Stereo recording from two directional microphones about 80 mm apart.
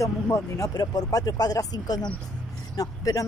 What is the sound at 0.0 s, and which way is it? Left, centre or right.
Speech, left.